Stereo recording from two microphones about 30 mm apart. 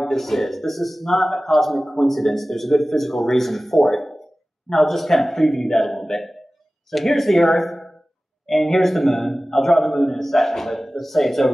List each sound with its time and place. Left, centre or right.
0.0 s a man's voice: centre